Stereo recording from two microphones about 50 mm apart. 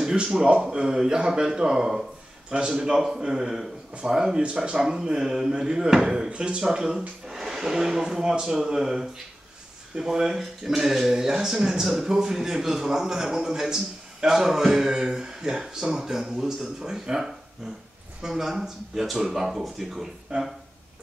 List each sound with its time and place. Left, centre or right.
0.0 s speech: centre